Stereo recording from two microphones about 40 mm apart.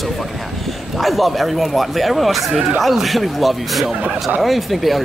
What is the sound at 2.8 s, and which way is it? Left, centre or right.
Speech, centre.